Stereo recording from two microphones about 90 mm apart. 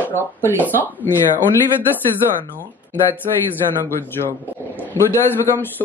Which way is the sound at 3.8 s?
25° left (ahead or behind).